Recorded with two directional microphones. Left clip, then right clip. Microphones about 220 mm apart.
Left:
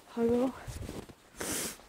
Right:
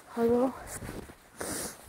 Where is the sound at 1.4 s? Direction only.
30° left (ahead or behind).